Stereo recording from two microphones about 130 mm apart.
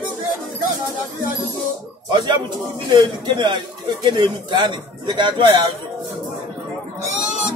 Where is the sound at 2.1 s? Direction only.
35° right (ahead or behind).